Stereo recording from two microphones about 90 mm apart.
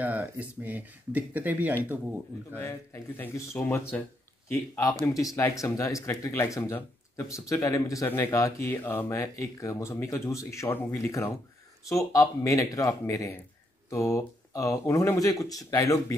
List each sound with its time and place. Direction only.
0.0 s speech: 20° right (ahead or behind)
2.5 s speech: 25° left (ahead or behind)
5.0 s speech: 40° left (ahead or behind)
8.1 s speech: 25° left (ahead or behind)
8.4 s speech: 35° left (ahead or behind)
9.2 s speech: 35° left (ahead or behind)